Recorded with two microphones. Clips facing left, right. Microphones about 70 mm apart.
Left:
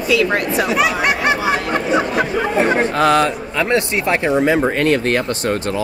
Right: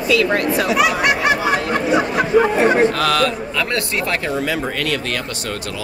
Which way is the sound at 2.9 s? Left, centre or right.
Left.